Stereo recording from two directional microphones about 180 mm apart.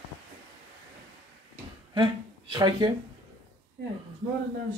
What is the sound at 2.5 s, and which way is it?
Speech, 25° right (ahead or behind).